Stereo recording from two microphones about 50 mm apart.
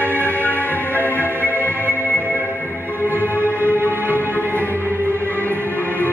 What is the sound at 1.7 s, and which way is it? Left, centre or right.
Music, right.